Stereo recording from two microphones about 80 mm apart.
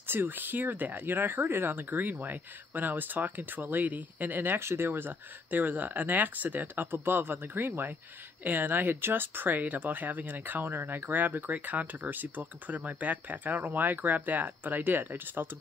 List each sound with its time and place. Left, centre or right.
0.0 s speech: right